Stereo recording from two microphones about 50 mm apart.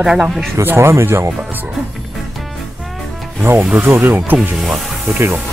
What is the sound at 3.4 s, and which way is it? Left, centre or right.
Speech, right.